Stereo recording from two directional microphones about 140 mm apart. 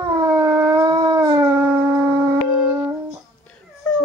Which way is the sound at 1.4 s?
15° right (ahead or behind).